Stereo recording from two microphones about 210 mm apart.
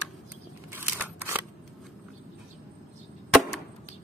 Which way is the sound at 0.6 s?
10° right (ahead or behind).